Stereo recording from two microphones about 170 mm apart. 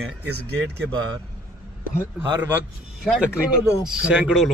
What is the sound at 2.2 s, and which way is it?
A man's voice, 15° right (ahead or behind).